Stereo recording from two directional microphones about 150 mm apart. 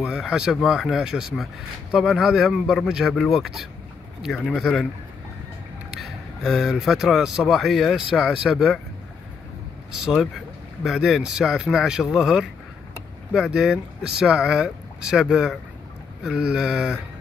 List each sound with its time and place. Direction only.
0.0 s speech: 5° right (ahead or behind)
5.9 s speech: centre (ahead or behind)
10.0 s speech: 5° right (ahead or behind)